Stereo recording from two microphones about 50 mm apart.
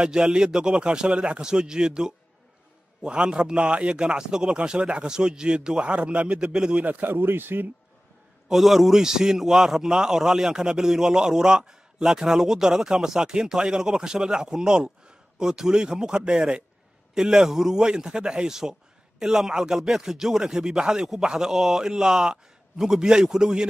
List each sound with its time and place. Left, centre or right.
0.0 s a man's voice: centre
6.8 s speech: right
7.1 s speech: right
8.5 s speech: centre